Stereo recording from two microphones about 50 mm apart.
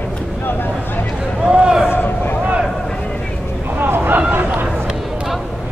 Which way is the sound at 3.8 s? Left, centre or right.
Right.